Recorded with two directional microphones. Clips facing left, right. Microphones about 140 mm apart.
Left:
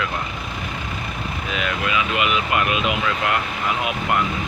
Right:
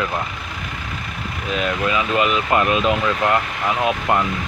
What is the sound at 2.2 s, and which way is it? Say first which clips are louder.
Speech: right 5 dB; 35° right (ahead or behind).